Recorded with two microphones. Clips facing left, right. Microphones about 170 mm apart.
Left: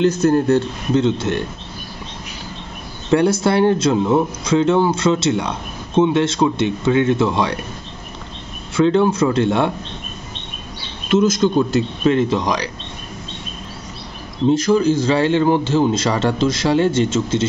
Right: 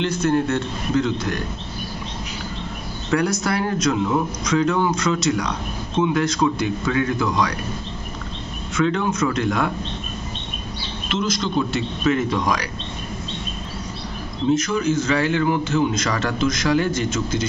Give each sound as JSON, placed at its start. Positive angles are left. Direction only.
{"t": 0.0, "sound": "a man's voice", "side_deg": 40}
{"t": 3.1, "sound": "a man's voice", "side_deg": 30}
{"t": 8.7, "sound": "a man's voice", "side_deg": 30}
{"t": 11.1, "sound": "a man's voice", "side_deg": 45}
{"t": 14.5, "sound": "a man's voice", "side_deg": 30}